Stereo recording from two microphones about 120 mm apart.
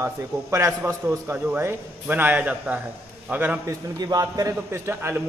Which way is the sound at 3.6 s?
30° right (ahead or behind).